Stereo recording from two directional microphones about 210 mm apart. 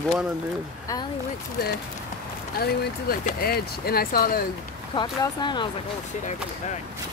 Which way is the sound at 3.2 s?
45° left (ahead or behind).